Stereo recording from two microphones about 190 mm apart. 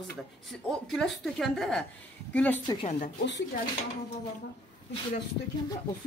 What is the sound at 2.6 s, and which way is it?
Speech, 25° left (ahead or behind).